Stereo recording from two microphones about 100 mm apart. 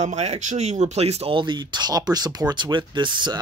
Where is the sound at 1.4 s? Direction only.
50° right (ahead or behind).